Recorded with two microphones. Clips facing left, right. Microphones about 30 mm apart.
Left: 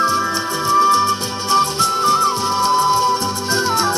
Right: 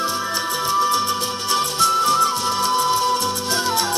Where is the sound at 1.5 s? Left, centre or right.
Left.